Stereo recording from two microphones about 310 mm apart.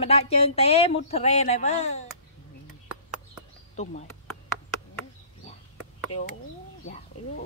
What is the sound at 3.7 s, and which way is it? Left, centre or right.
Speech, left.